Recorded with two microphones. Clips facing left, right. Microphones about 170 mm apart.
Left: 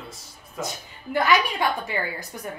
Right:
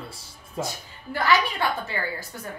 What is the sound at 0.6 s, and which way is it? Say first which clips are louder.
Speech: right 2 dB; 30° right (ahead or behind).